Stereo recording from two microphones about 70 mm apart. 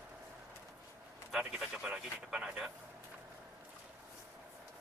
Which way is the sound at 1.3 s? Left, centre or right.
Centre.